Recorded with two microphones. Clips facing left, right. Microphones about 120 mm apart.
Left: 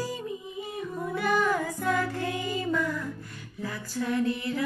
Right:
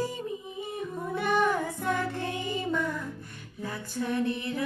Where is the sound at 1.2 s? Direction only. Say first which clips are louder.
Even; 25° right (ahead or behind).